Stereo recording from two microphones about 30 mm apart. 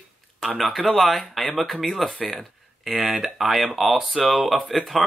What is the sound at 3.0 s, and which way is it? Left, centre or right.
Speech, centre.